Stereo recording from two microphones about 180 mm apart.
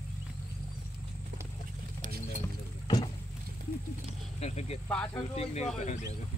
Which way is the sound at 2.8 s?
25° left (ahead or behind).